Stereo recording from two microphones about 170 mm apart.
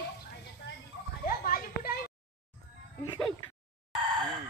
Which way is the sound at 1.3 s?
60° left (ahead or behind).